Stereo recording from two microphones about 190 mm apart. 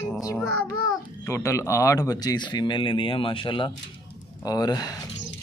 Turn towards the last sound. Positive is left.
turn(degrees=20)  # may be behind; listen again after turning